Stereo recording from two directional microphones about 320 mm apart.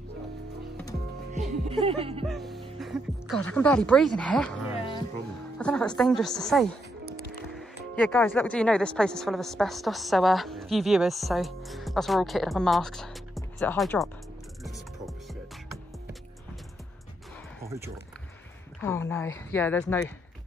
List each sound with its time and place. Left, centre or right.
1.5 s speech: centre
2.2 s speech: centre
14.6 s music: centre
18.8 s a woman's voice: centre